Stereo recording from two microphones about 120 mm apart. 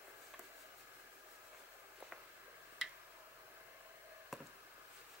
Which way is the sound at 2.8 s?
5° right (ahead or behind).